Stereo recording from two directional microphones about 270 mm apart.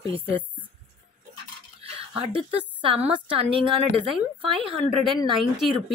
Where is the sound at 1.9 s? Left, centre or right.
Centre.